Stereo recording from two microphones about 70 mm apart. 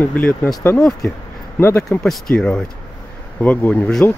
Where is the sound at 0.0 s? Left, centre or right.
Left.